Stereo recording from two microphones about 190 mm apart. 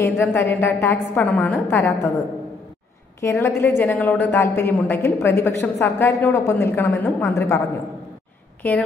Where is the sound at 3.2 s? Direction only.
15° left (ahead or behind).